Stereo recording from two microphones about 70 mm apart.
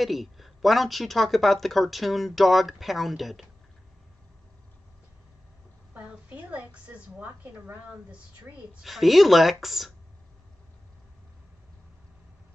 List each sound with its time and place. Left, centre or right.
0.0 s speech: centre
5.9 s a sound: right
8.8 s speech: centre